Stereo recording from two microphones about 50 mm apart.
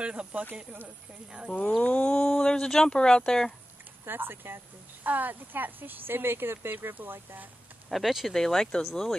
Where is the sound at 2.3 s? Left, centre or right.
Centre.